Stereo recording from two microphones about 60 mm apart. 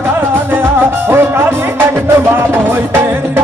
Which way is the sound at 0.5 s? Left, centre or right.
Right.